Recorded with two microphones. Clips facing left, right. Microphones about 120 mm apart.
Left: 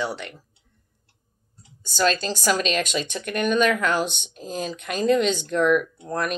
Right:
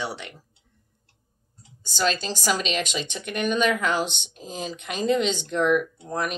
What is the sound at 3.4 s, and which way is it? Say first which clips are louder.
Speech: left 2 dB; 15° right (ahead or behind).